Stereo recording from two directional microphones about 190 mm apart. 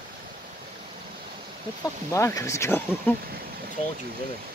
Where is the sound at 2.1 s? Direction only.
15° left (ahead or behind).